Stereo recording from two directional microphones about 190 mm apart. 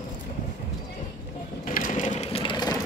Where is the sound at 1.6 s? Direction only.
45° left (ahead or behind); by 2.8 s 20° left (ahead or behind).